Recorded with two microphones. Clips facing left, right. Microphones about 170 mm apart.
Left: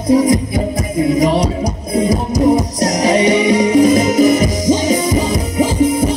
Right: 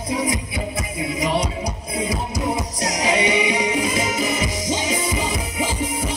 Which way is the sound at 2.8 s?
40° left (ahead or behind).